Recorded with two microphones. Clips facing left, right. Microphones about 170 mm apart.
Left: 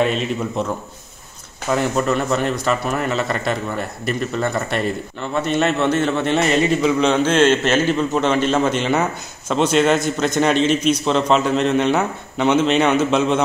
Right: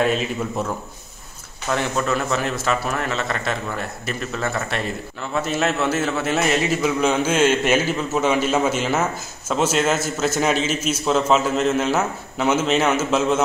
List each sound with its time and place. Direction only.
0.0 s a man's voice: centre (ahead or behind)
1.7 s a man's voice: 5° left (ahead or behind)